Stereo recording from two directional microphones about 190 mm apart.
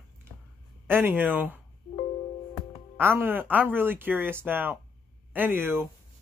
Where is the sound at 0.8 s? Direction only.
10° right (ahead or behind).